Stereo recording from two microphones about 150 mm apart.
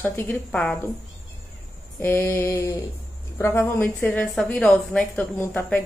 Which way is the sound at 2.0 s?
15° left (ahead or behind).